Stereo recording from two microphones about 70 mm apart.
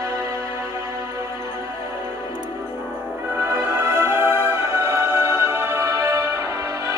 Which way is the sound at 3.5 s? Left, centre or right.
Right.